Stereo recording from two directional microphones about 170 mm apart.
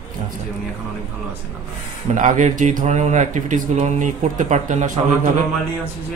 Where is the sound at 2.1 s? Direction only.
45° right (ahead or behind).